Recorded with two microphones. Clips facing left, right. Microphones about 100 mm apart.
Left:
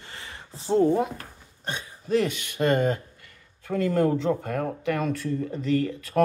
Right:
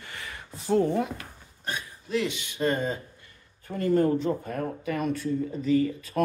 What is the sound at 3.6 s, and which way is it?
Speech, 90° left.